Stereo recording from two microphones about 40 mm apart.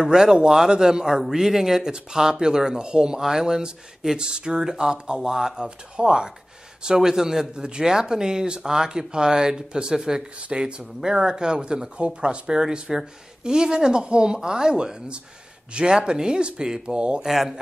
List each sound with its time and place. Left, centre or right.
0.0 s speech: centre
3.2 s speech: centre
17.2 s speech: centre